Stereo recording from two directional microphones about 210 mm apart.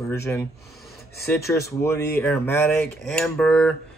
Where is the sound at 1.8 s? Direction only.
10° left (ahead or behind).